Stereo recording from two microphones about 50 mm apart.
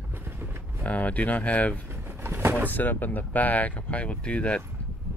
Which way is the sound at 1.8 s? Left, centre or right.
Right.